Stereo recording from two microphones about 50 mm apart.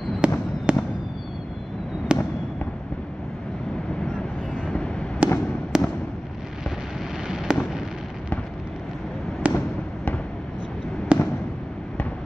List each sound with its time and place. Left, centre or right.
0.2 s fireworks: right
2.1 s fireworks: centre
4.6 s fireworks: left
5.2 s fireworks: right
5.7 s fireworks: centre
7.5 s fireworks: centre
9.5 s fireworks: right
11.1 s fireworks: right